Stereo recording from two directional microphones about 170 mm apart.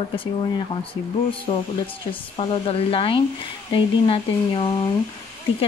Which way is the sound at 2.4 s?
35° left (ahead or behind).